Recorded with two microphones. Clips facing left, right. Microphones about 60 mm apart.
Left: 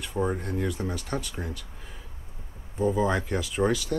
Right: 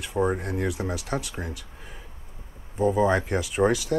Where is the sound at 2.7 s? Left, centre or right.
Centre.